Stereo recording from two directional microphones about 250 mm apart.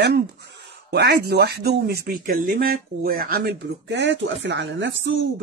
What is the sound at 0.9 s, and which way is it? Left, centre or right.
Speech, right.